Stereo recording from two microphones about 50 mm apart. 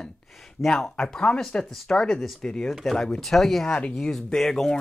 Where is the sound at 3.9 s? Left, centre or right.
Centre.